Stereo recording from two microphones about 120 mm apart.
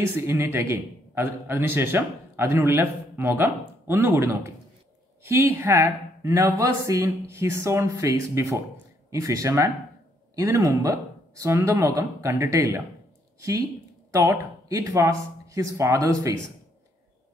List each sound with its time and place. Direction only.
0.0 s a man's voice: 20° right (ahead or behind)